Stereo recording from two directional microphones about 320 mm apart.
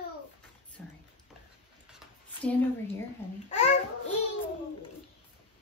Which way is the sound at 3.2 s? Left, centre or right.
Centre.